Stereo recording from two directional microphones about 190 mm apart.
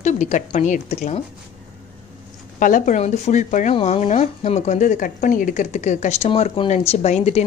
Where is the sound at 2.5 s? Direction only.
45° left (ahead or behind).